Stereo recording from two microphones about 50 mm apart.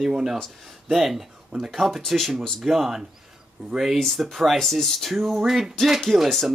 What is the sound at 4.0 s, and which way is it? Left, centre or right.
Speech, centre.